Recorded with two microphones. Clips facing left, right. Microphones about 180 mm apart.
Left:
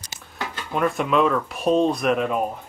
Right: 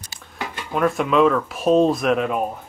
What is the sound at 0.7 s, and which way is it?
Speech, centre (ahead or behind).